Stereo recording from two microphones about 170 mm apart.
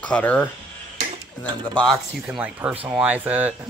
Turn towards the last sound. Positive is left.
turn(degrees=-10)  # may be behind; listen again after turning